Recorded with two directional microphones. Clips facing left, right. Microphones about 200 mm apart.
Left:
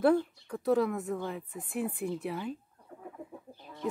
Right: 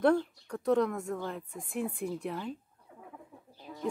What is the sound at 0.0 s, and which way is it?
Speech, 5° left (ahead or behind).